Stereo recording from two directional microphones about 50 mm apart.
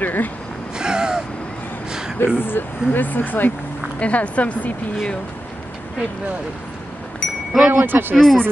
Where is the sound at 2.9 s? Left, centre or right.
Left.